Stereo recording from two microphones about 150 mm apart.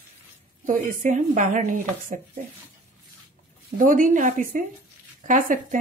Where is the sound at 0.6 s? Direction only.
60° right (ahead or behind).